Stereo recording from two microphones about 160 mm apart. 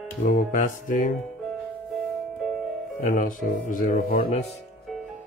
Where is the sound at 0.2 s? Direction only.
55° left (ahead or behind).